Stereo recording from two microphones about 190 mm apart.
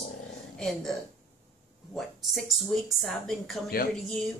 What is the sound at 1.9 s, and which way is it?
Speech, centre (ahead or behind).